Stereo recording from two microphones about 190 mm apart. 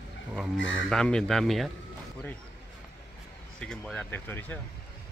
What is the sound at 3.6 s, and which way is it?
Speech, 5° left (ahead or behind).